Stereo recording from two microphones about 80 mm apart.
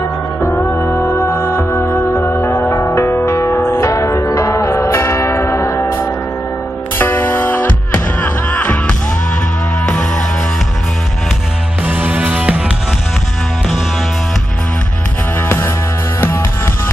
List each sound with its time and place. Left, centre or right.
0.4 s music: left
7.0 s music: left
9.8 s music: centre
11.8 s music: centre
15.4 s music: left